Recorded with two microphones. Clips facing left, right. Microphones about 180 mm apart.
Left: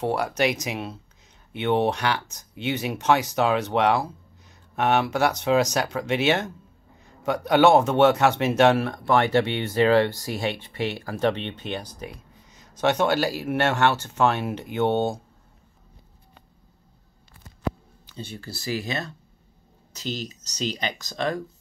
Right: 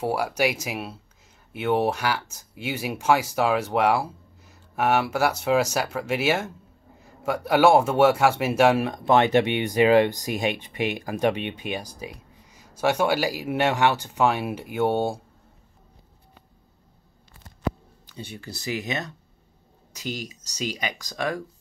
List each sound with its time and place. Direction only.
0.0 s speech: 10° right (ahead or behind)
18.1 s speech: 15° right (ahead or behind)